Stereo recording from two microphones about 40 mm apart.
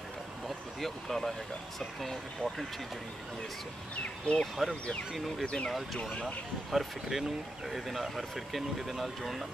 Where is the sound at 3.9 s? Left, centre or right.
Left.